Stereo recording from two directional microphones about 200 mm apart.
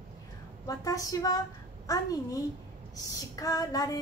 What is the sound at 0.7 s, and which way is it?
A woman's voice, 15° left (ahead or behind).